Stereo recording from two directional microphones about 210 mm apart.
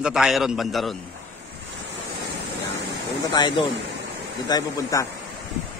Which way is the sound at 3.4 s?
20° left (ahead or behind).